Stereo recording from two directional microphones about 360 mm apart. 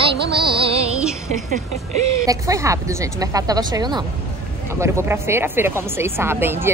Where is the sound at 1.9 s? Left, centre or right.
Right.